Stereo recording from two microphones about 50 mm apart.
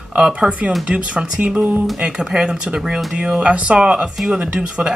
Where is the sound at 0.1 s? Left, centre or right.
Centre.